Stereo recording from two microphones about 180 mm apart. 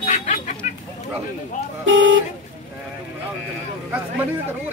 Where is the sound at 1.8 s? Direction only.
90° right.